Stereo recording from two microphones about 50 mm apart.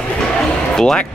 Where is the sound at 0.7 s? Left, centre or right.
Centre.